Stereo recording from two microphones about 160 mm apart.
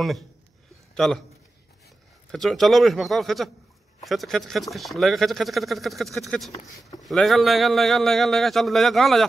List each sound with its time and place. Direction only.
0.9 s speech: centre (ahead or behind)
2.3 s speech: centre (ahead or behind)